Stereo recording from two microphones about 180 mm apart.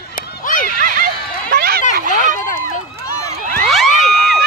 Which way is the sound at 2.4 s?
45° left (ahead or behind).